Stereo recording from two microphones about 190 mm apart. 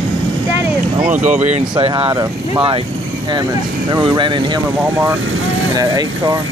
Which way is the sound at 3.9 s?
25° right (ahead or behind).